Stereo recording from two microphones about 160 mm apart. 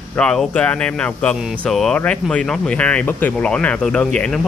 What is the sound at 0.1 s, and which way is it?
Speech, 5° left (ahead or behind).